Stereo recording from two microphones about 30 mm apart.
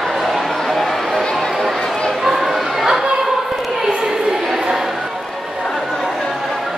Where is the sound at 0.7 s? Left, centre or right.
Centre.